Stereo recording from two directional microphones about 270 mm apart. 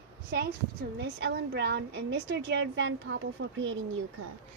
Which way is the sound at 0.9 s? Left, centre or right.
Right.